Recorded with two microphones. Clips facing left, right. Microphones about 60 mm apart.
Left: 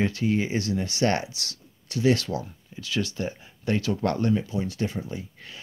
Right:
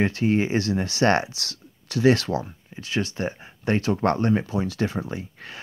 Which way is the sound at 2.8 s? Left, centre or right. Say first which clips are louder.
Right 2 dB; right.